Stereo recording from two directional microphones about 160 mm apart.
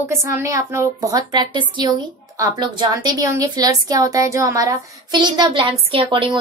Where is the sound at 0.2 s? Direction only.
20° right (ahead or behind).